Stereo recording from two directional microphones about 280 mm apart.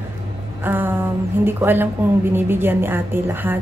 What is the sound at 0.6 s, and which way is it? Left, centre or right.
A woman's voice, centre.